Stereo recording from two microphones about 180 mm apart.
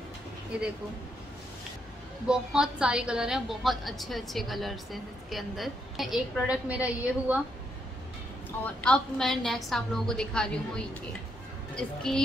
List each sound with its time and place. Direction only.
0.5 s a woman's voice: 5° right (ahead or behind)
2.2 s a woman's voice: 5° right (ahead or behind)
8.5 s a woman's voice: 10° left (ahead or behind)
11.7 s a woman's voice: 5° left (ahead or behind)